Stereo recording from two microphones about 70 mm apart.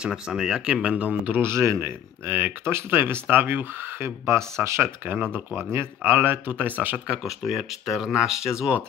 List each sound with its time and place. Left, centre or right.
0.0 s speech: centre
1.4 s speech: right
4.6 s speech: right
5.0 s speech: right
7.1 s speech: centre